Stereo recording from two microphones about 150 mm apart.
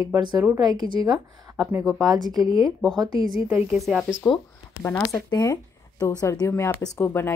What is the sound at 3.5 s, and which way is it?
Speech, 10° right (ahead or behind).